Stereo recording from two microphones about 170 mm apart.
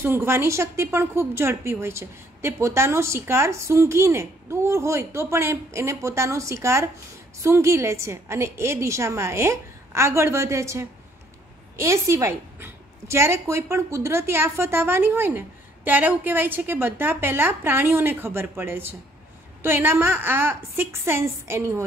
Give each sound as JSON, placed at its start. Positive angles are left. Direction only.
{"t": 0.0, "sound": "a woman's voice", "side_deg": -15}